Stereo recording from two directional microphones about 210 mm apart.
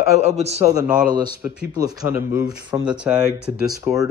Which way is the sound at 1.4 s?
15° right (ahead or behind).